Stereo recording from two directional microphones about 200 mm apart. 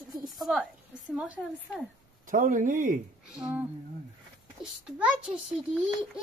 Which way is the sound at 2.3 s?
40° right (ahead or behind).